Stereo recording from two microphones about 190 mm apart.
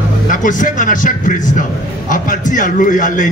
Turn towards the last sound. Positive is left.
turn(degrees=45)  # may be behind; listen again after turning